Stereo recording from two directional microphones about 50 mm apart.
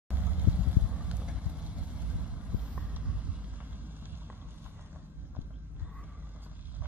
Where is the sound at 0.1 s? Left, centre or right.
Right.